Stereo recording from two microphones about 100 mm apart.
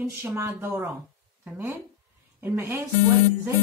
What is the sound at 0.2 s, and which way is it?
Speech, 25° right (ahead or behind).